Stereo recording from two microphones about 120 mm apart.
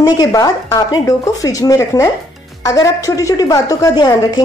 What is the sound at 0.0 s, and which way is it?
A woman's voice, 30° left (ahead or behind).